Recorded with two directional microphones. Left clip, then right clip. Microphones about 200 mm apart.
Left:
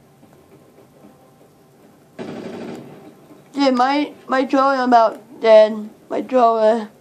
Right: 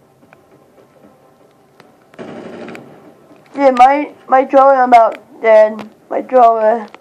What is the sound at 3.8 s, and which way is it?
A woman's voice, 90° left.